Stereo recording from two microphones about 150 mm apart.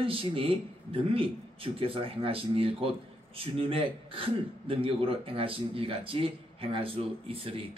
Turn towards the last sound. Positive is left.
turn(degrees=-40)  # may be behind; listen again after turning